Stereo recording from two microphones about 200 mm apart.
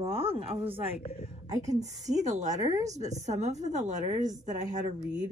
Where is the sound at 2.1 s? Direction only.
35° right (ahead or behind).